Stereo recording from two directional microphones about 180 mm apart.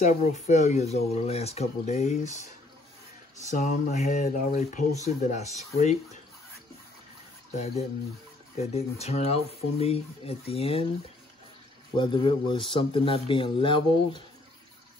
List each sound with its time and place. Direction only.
0.0 s speech: 40° left (ahead or behind)
7.5 s speech: 35° left (ahead or behind)
12.0 s speech: 30° left (ahead or behind)